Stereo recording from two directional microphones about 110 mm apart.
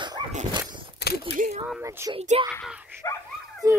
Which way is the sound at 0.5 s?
50° right (ahead or behind).